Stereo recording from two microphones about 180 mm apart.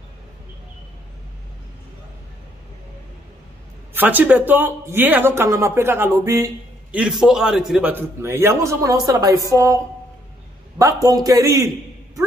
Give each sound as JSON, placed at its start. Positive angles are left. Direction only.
{"t": 3.9, "sound": "speech", "side_deg": -10}
{"t": 7.0, "sound": "speech", "side_deg": -5}
{"t": 10.8, "sound": "a man's voice", "side_deg": -20}